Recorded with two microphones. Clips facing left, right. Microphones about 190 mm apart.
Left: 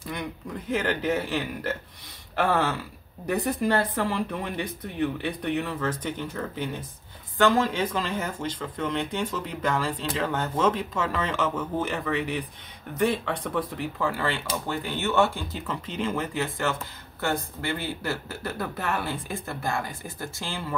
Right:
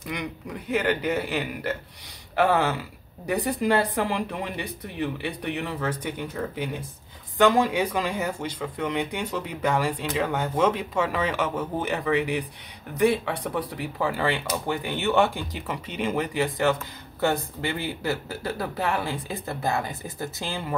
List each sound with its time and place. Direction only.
0.7 s speech: 10° right (ahead or behind)
19.4 s speech: 20° right (ahead or behind)